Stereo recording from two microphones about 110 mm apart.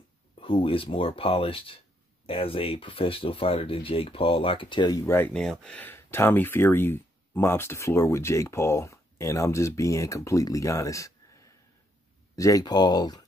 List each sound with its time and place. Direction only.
0.4 s speech: 55° left (ahead or behind)
5.0 s speech: 20° left (ahead or behind)
5.3 s speech: 5° left (ahead or behind); by 13.2 s 40° left (ahead or behind)